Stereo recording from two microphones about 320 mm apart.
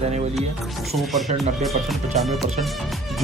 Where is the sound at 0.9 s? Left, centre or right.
Centre.